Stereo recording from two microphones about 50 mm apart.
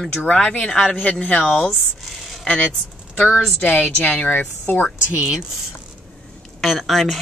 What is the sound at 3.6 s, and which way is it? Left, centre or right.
Speech, left.